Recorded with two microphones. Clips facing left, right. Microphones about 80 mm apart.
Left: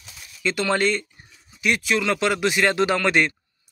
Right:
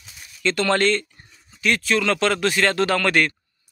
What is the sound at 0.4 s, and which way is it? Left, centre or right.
Speech, centre.